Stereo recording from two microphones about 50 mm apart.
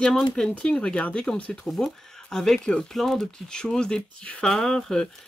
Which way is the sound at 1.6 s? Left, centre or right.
Centre.